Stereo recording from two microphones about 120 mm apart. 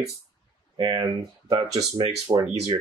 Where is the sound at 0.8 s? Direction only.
40° right (ahead or behind).